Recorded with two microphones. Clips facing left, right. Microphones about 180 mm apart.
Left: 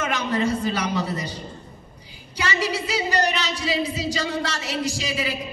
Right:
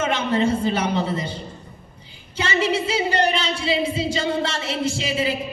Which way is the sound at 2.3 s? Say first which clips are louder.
Right 4 dB; 25° right (ahead or behind).